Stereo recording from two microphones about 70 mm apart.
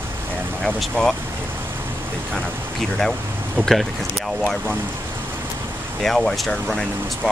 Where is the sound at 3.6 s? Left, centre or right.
Right.